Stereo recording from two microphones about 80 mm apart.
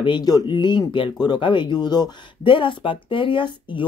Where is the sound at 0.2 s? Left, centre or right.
Left.